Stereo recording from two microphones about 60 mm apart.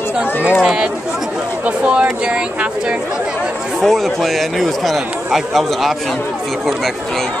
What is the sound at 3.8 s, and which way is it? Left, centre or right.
Speech, centre.